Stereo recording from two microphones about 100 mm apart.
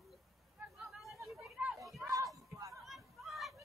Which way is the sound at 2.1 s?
35° right (ahead or behind).